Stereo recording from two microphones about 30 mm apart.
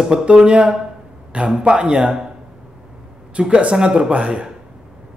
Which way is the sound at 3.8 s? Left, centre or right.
Right.